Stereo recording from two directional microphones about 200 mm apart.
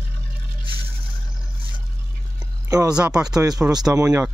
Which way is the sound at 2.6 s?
15° right (ahead or behind).